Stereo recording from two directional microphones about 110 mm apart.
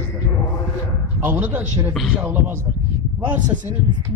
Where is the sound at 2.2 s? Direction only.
20° right (ahead or behind).